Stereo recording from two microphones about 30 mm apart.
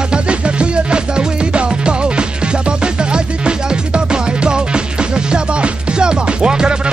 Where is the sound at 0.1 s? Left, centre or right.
Right.